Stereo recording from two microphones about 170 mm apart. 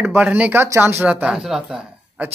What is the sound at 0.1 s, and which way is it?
Speech, 10° right (ahead or behind).